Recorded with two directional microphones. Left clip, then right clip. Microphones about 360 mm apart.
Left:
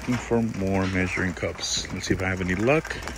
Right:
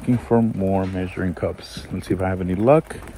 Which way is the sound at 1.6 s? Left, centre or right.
Right.